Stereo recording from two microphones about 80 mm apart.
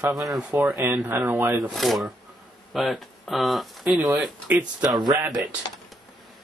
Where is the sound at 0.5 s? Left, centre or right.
Right.